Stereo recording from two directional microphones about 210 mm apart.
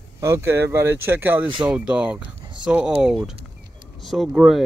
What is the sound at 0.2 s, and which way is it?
Speech, 15° right (ahead or behind).